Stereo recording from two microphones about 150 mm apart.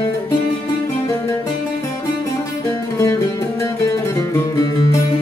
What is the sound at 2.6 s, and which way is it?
Music, 20° left (ahead or behind).